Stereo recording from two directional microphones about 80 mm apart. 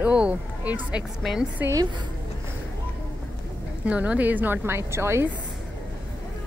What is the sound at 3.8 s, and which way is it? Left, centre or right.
A woman's voice, centre.